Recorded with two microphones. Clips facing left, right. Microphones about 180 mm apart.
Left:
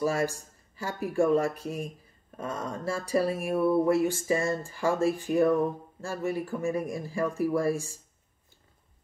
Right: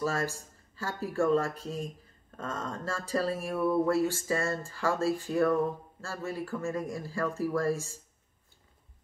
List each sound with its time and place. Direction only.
0.0 s speech: 15° left (ahead or behind)